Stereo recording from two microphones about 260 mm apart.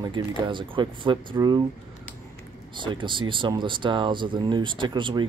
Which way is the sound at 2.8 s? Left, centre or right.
Centre.